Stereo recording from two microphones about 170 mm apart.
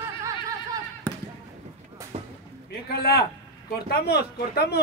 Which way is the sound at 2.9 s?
65° left (ahead or behind).